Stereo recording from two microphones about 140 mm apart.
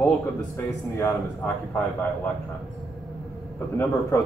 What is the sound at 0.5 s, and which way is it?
Speech, 15° left (ahead or behind).